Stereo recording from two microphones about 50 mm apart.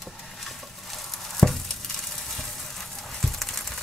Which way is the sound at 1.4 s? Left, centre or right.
Left.